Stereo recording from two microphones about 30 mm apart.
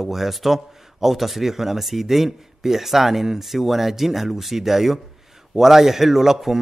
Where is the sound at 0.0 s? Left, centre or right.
Centre.